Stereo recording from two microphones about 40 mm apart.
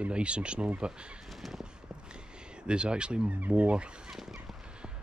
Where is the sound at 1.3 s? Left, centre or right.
Centre.